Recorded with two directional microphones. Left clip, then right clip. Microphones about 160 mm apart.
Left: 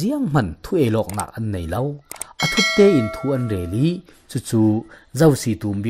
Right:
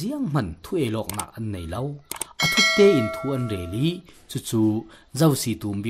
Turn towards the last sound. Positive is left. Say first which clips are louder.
# left 6 dB
turn(degrees=15)  # may be behind; listen again after turning